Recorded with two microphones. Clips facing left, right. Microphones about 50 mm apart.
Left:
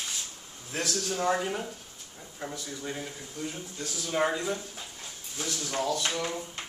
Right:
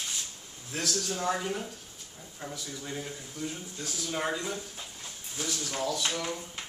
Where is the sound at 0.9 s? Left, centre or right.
Centre.